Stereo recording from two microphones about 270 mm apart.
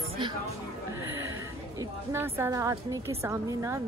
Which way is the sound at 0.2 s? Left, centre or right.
Centre.